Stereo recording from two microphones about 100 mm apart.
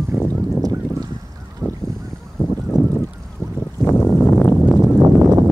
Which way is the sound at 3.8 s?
20° left (ahead or behind).